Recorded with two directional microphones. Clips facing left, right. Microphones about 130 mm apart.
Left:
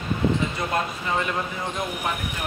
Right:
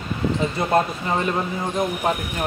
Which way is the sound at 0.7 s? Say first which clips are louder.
Right 5 dB; 35° right (ahead or behind).